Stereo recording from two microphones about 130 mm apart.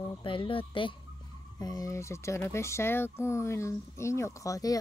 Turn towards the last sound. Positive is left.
turn(degrees=25)  # may be behind; listen again after turning